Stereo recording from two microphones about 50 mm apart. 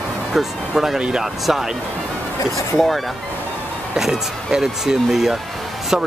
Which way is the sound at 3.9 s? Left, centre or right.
Centre.